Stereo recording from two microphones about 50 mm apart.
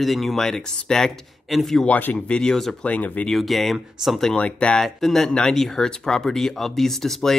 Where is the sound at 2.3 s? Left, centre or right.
Centre.